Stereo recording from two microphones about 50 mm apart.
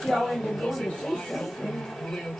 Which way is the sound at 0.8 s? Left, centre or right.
Centre.